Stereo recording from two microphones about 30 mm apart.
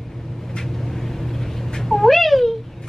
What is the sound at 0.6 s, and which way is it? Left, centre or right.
Vehicle, centre.